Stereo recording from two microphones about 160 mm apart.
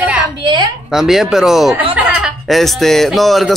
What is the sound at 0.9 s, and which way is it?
A man's voice, centre (ahead or behind).